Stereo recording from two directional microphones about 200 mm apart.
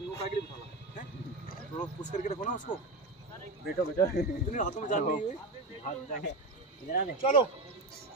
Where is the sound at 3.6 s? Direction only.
45° left (ahead or behind).